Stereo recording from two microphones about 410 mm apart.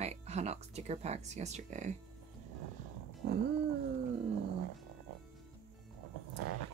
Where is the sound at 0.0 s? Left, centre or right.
Centre.